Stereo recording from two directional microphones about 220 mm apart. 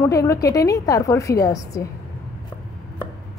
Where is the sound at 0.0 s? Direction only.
15° left (ahead or behind).